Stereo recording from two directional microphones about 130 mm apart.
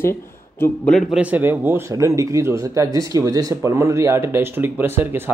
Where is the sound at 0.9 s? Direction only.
Centre (ahead or behind); by 5.3 s 15° right (ahead or behind).